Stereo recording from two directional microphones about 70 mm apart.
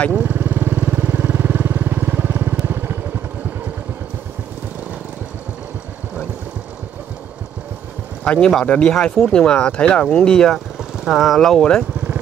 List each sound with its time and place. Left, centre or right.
0.1 s vehicle: right
8.2 s speech: centre
10.8 s speech: centre